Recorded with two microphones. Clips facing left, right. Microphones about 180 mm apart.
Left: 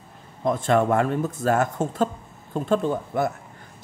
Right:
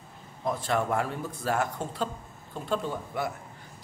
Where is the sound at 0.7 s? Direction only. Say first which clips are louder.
Left 8 dB; 75° left (ahead or behind).